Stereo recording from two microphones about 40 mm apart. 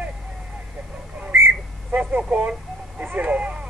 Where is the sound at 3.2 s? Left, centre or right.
Right.